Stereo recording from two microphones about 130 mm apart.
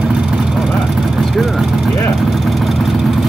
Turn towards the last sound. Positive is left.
turn(degrees=0)  # may be behind; listen again after turning